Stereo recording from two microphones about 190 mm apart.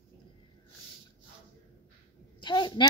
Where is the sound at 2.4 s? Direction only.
25° left (ahead or behind).